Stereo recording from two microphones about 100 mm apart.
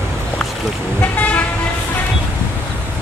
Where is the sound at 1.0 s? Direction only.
15° left (ahead or behind).